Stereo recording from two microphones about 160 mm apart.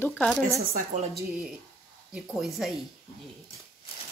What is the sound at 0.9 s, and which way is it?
Speech, 50° right (ahead or behind).